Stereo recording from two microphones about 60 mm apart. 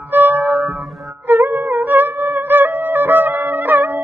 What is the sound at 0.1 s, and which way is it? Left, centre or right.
Music, right.